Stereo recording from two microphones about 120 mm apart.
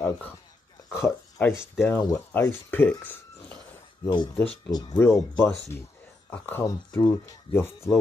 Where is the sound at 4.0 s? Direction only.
40° left (ahead or behind).